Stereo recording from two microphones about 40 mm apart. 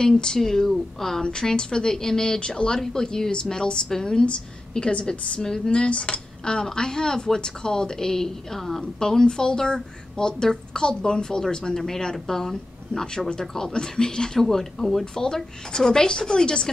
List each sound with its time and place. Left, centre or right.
0.0 s a woman's voice: centre
1.2 s a woman's voice: centre
9.0 s a woman's voice: centre